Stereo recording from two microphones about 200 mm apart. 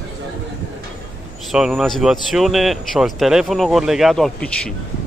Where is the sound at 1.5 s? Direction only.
5° right (ahead or behind).